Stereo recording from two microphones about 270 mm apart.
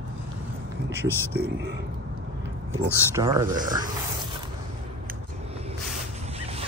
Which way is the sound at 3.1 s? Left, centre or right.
Centre.